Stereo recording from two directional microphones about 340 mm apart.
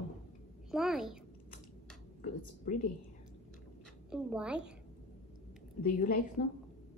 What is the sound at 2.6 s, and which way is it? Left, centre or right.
Speech, left.